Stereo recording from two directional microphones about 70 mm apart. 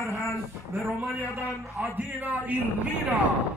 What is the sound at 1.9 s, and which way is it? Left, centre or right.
Speech, right.